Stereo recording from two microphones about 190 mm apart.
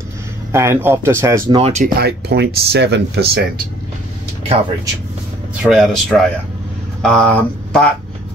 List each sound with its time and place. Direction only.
0.5 s speech: 15° right (ahead or behind)
1.6 s speech: 35° right (ahead or behind)
2.0 s speech: 60° right (ahead or behind)
5.6 s speech: centre (ahead or behind)